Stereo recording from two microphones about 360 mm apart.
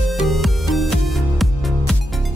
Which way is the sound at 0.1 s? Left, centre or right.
Centre.